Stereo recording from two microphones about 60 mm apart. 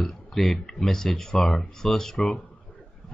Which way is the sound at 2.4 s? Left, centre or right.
Left.